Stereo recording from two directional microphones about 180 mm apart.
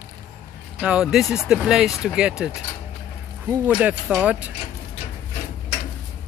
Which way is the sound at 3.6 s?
5° right (ahead or behind).